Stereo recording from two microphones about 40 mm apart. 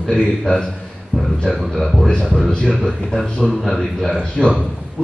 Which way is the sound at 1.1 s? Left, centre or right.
Left.